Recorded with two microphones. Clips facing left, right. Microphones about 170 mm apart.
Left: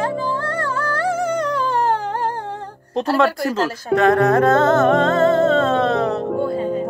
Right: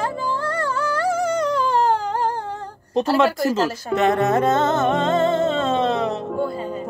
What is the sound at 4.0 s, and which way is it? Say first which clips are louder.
Music: left 4 dB; 20° right (ahead or behind).